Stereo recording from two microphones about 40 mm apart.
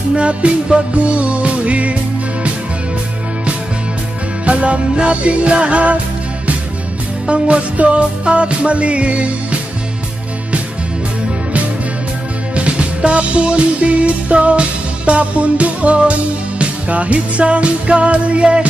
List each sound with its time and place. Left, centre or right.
0.1 s music: right
4.5 s music: right
7.2 s music: right
12.5 s music: right